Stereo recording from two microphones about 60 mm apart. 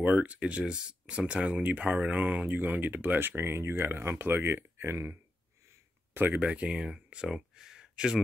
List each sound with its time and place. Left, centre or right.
0.0 s speech: right
6.1 s speech: right
6.4 s speech: centre